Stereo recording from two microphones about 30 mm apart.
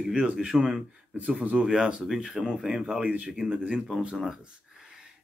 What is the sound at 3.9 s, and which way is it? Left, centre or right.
Speech, centre.